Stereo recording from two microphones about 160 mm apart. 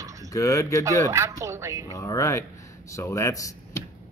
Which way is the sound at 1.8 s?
20° left (ahead or behind).